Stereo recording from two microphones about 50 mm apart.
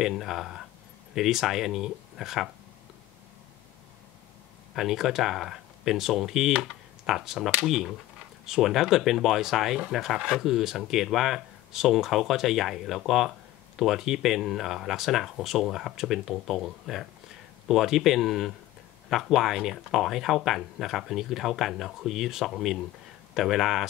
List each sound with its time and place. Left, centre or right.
0.0 s speech: centre
4.7 s speech: centre